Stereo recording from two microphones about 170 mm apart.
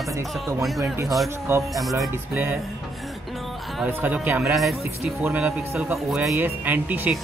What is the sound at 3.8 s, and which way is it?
Speech, 10° right (ahead or behind).